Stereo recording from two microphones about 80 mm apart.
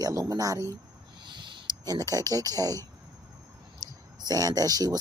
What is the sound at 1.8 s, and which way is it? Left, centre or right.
Speech, right.